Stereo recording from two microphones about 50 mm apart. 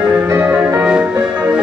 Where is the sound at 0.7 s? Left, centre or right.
Centre.